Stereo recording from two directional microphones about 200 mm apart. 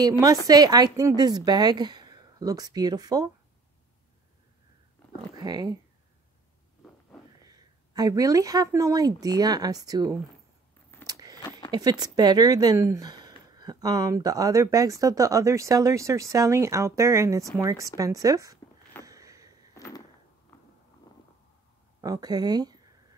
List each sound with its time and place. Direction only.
0.0 s a woman's voice: 20° right (ahead or behind)
5.3 s a woman's voice: 20° right (ahead or behind)
7.4 s a woman's voice: 20° right (ahead or behind)
11.1 s biting: 20° right (ahead or behind)
11.7 s speech: 20° right (ahead or behind)
19.0 s a sound: 15° right (ahead or behind)
19.7 s a sound: 15° left (ahead or behind)
22.0 s a woman's voice: 20° right (ahead or behind)